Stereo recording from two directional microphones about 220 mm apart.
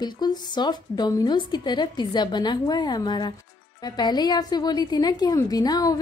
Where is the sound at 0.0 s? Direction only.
20° left (ahead or behind).